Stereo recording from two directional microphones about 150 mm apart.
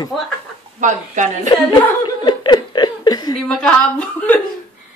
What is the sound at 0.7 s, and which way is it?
Speech, 55° right (ahead or behind).